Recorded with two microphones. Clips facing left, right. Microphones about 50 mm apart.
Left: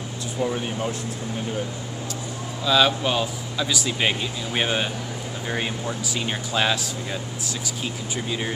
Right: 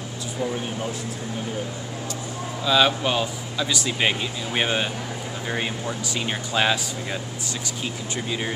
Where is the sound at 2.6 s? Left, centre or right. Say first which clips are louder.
Even; centre.